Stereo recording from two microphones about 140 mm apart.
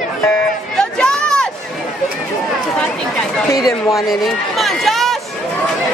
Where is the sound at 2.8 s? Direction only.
5° left (ahead or behind).